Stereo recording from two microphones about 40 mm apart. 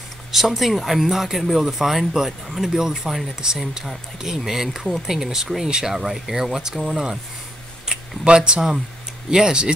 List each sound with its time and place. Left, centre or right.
0.3 s speech: centre
7.8 s a sound: centre
9.3 s speech: centre